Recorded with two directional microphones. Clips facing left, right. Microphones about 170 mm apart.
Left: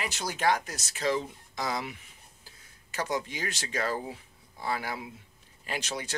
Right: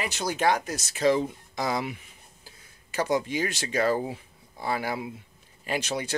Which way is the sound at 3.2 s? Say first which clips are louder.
Right 7 dB; 15° right (ahead or behind).